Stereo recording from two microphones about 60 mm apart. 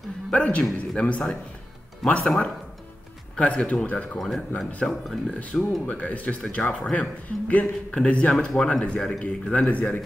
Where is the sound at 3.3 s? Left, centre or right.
Left.